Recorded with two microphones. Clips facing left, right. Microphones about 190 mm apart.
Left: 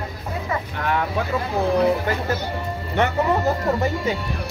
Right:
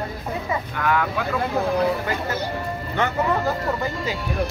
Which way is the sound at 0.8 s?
30° left (ahead or behind).